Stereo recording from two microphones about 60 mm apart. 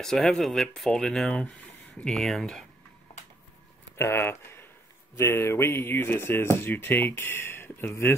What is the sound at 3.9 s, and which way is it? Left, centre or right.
Speech, left.